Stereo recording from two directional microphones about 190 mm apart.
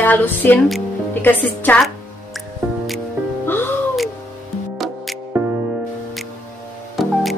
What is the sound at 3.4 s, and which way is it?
Music, 10° left (ahead or behind).